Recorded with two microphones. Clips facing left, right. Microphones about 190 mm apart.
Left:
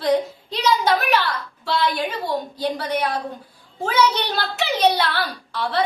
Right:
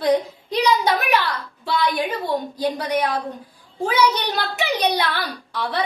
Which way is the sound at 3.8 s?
15° right (ahead or behind).